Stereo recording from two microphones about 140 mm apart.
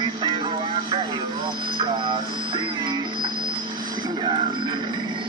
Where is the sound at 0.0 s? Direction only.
30° right (ahead or behind).